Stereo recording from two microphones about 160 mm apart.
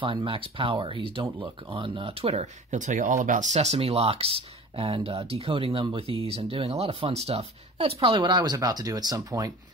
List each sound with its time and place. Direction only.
0.0 s speech: 35° right (ahead or behind)